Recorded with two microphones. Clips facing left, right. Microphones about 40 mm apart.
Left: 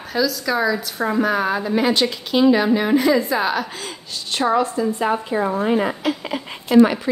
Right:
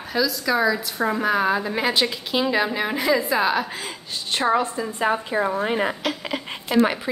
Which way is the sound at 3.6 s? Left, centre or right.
Centre.